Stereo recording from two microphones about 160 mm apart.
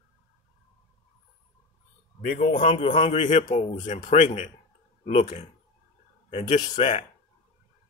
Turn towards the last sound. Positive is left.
turn(degrees=25)  # may be behind; listen again after turning